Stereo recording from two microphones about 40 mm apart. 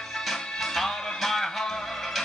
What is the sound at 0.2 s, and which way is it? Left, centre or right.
Music, centre.